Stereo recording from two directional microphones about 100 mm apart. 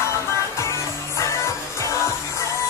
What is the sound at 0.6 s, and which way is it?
Music, 30° left (ahead or behind).